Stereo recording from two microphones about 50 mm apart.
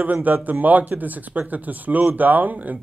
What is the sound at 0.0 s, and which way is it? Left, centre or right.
A man's voice, right.